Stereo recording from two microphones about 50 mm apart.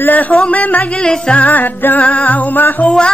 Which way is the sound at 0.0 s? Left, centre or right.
Left.